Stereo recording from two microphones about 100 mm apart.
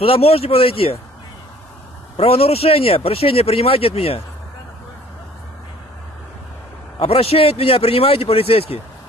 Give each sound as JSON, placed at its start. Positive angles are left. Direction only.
{"t": 0.0, "sound": "speech", "side_deg": 70}
{"t": 2.1, "sound": "speech", "side_deg": 75}
{"t": 7.0, "sound": "speech", "side_deg": 70}